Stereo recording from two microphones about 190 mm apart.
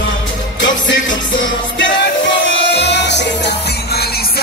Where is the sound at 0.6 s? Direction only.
75° left (ahead or behind).